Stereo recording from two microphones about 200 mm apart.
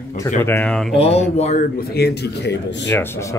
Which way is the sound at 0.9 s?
30° left (ahead or behind).